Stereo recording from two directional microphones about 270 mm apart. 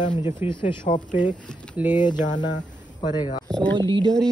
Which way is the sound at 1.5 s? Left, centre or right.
Centre.